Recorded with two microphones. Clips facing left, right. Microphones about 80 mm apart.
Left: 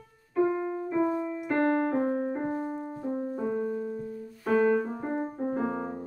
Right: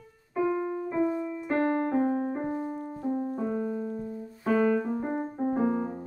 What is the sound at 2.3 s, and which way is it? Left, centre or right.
Music, centre.